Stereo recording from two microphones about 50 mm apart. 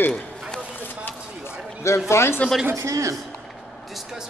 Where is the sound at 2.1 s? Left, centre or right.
Left.